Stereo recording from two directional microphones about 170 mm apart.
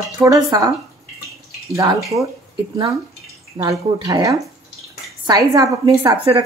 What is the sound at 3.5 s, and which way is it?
Speech, 20° right (ahead or behind).